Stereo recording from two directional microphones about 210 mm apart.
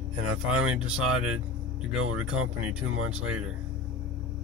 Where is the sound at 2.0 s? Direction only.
85° right.